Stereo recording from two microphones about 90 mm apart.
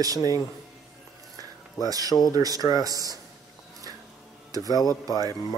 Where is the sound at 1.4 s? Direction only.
45° right (ahead or behind).